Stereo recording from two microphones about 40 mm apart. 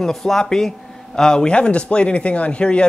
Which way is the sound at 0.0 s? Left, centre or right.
Centre.